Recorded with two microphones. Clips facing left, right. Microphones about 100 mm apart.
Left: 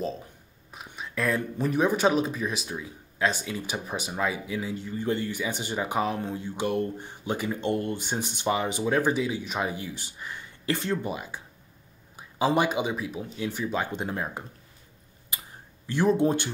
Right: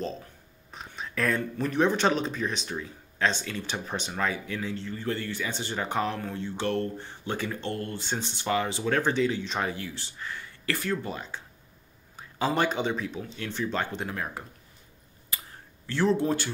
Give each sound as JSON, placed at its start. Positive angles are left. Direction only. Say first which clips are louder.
{"t": 0.9, "sound": "speech", "louder": "even", "side_deg": 0}
{"t": 14.0, "sound": "speech", "louder": "left 2 dB", "side_deg": 25}
{"t": 15.3, "sound": "a sound", "louder": "even", "side_deg": 20}
{"t": 15.9, "sound": "speech", "louder": "left 2 dB", "side_deg": 15}